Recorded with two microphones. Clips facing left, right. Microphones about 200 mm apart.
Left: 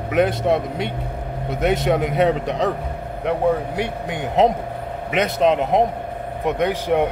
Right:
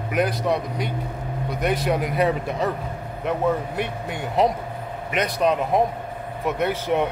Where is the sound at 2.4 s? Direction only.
75° left (ahead or behind).